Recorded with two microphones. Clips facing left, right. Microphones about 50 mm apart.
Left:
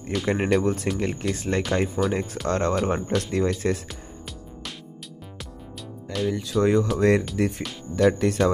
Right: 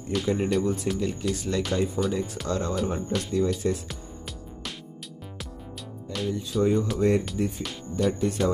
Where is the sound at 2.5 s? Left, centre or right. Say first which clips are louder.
Left 5 dB; left.